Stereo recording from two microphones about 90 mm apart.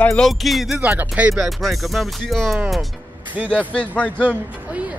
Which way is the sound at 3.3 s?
15° right (ahead or behind).